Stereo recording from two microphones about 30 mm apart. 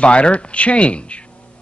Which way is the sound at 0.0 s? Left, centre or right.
Left.